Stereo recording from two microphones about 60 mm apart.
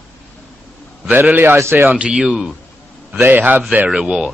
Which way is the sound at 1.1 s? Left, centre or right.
Right.